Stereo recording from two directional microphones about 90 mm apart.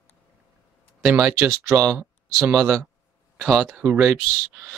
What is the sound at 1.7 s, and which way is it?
Speech, 20° right (ahead or behind).